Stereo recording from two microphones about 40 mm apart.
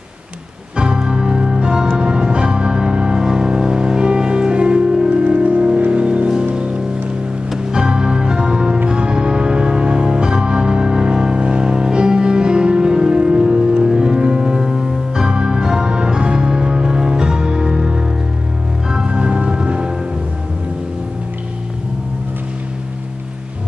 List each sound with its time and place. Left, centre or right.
0.7 s music: right